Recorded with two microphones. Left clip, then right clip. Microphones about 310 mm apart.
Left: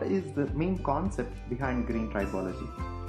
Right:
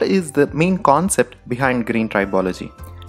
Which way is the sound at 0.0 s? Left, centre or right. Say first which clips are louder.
Right 14 dB; right.